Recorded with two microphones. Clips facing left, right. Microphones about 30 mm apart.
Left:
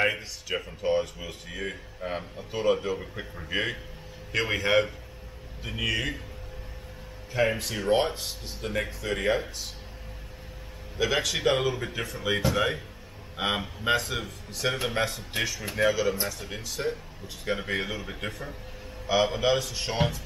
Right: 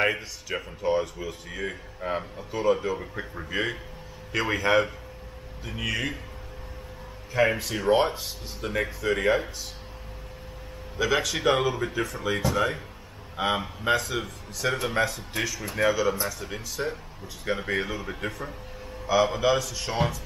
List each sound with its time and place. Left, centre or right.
0.0 s speech: centre
7.5 s speech: centre
11.0 s speech: centre
13.8 s speech: centre
15.8 s speech: centre